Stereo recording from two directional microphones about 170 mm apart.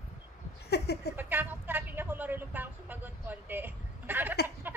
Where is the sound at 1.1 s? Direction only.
10° right (ahead or behind).